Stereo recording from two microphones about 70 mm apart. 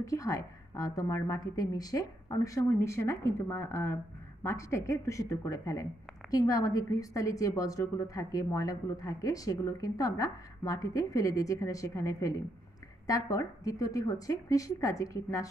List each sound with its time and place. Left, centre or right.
0.0 s a woman's voice: left
2.3 s a woman's voice: left